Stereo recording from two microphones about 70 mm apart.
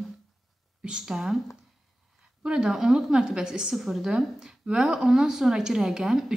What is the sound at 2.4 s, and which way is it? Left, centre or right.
A woman's voice, centre.